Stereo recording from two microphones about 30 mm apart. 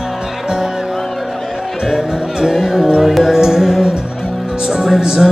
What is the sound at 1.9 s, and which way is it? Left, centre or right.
Music, centre.